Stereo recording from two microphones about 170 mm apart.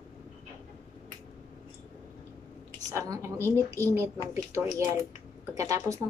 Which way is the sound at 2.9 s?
20° right (ahead or behind).